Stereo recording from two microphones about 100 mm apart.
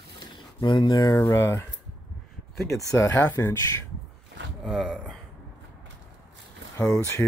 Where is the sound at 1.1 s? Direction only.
30° left (ahead or behind).